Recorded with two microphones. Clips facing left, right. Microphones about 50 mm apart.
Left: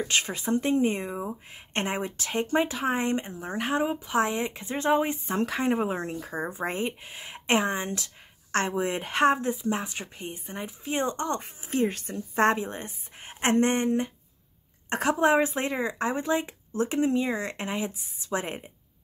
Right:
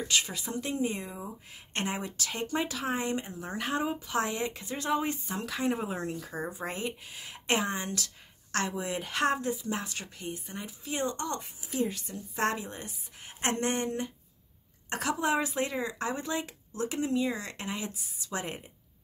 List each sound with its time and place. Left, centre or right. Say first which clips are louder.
0.0 s speech: left 3 dB; left